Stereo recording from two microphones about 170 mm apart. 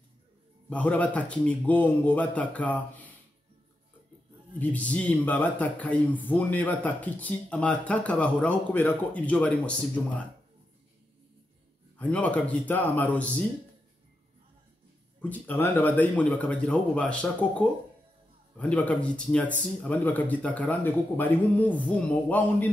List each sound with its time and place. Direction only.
0.7 s speech: 10° left (ahead or behind)
4.6 s speech: 10° left (ahead or behind)
12.0 s speech: 10° left (ahead or behind)
15.2 s speech: 10° left (ahead or behind)